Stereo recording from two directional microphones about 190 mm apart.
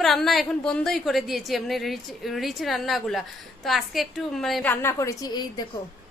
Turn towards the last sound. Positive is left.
turn(degrees=20)  # may be behind; listen again after turning